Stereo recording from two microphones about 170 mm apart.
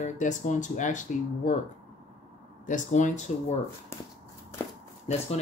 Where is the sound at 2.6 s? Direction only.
45° left (ahead or behind).